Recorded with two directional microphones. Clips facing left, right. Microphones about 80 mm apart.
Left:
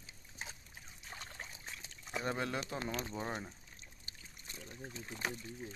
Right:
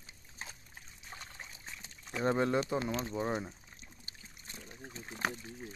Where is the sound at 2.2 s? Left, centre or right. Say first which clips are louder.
Right 8 dB; right; by 3.6 s centre.